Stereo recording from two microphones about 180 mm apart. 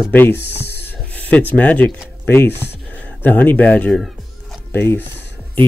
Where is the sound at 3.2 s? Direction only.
10° left (ahead or behind).